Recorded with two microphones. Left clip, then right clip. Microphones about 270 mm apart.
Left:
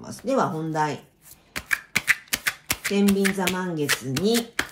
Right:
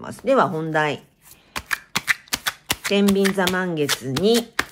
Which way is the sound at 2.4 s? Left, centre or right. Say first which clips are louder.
Right 3 dB; centre.